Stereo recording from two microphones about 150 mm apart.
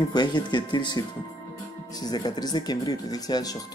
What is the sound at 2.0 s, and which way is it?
Speech, 25° left (ahead or behind).